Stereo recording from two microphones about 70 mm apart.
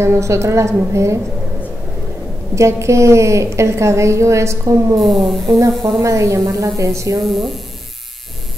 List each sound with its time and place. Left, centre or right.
0.0 s a woman's voice: right
2.5 s a woman's voice: right
5.0 s speech: centre
5.9 s a woman's voice: right
7.2 s speech: centre